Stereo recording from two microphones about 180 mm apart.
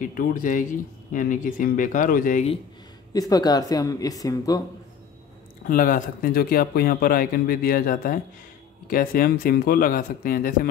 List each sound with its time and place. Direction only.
0.0 s speech: 50° left (ahead or behind)
3.1 s speech: 20° left (ahead or behind)
5.7 s speech: 50° left (ahead or behind)